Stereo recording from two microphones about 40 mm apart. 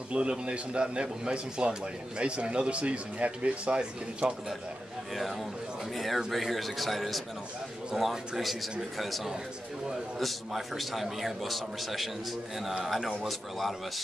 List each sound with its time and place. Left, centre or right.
0.1 s a man's voice: right
5.9 s a man's voice: centre